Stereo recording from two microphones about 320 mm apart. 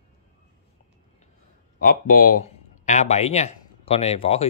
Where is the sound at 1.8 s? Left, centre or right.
Left.